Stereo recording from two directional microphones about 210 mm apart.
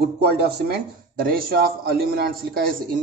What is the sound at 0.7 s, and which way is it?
A man's voice, 45° right (ahead or behind).